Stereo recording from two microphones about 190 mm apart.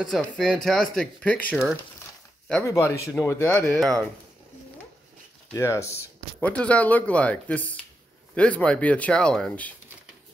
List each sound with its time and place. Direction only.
0.0 s speech: centre (ahead or behind)
2.6 s speech: 15° left (ahead or behind)
5.5 s speech: 15° left (ahead or behind)